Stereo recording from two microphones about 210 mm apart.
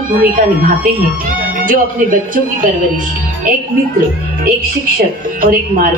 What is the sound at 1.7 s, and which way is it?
Speech, 40° right (ahead or behind).